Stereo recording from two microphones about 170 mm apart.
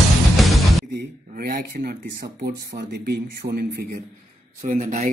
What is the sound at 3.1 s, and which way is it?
Speech, 70° right (ahead or behind).